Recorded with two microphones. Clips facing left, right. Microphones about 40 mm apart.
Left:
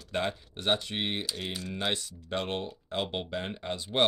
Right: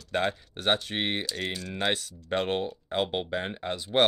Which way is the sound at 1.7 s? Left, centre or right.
Centre.